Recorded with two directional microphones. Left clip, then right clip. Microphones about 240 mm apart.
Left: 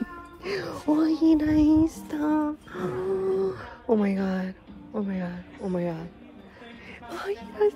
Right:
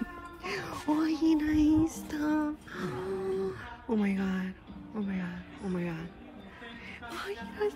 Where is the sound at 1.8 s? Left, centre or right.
Centre.